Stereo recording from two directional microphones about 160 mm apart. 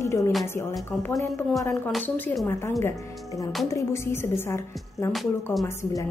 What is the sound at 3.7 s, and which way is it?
Speech, 15° left (ahead or behind).